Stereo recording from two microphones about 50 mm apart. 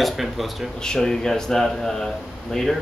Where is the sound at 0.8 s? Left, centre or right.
Centre.